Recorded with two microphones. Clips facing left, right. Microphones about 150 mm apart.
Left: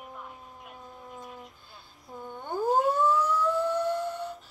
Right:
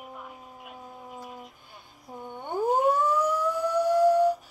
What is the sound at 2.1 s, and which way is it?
Siren, 20° right (ahead or behind).